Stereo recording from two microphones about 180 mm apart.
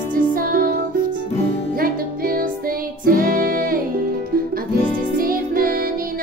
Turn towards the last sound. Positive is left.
turn(degrees=-55)  # may be behind; listen again after turning